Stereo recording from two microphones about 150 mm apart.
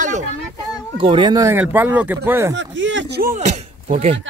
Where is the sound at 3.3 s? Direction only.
50° right (ahead or behind).